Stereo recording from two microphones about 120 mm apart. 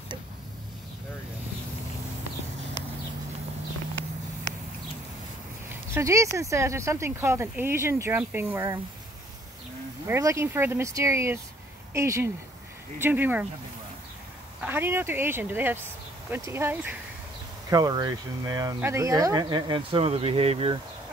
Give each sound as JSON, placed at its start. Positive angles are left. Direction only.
{"t": 5.7, "sound": "speech", "side_deg": -25}
{"t": 10.0, "sound": "speech", "side_deg": -25}
{"t": 14.6, "sound": "speech", "side_deg": -15}
{"t": 17.6, "sound": "speech", "side_deg": -30}
{"t": 20.1, "sound": "speech", "side_deg": -55}